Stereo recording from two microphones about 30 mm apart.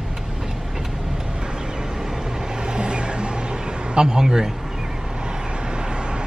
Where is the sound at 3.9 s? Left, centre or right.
Centre.